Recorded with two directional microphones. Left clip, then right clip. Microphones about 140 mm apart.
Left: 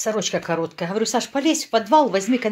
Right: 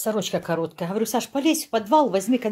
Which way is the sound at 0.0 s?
20° right (ahead or behind).